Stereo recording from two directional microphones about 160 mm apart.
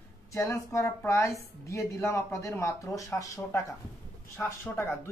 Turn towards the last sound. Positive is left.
turn(degrees=15)  # may be behind; listen again after turning